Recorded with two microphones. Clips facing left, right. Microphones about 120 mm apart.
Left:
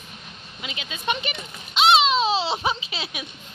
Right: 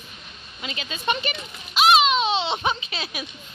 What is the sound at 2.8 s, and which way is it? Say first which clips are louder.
Speech: right 1 dB; 20° left (ahead or behind).